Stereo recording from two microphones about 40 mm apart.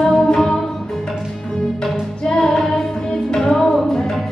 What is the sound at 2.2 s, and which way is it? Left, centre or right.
Music, centre.